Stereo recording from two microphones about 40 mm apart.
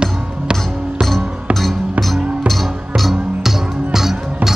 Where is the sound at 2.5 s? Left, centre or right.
Centre.